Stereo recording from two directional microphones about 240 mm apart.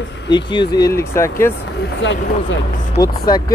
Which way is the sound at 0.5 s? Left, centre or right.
Centre.